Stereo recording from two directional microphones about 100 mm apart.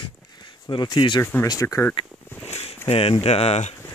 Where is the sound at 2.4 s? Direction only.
90° left.